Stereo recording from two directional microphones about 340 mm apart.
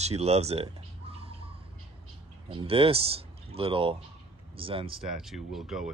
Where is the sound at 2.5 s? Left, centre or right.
Centre.